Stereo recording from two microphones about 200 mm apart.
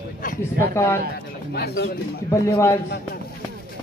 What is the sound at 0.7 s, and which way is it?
Speech, 15° left (ahead or behind).